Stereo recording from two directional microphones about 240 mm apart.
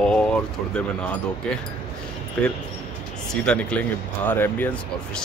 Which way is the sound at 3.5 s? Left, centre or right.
Centre.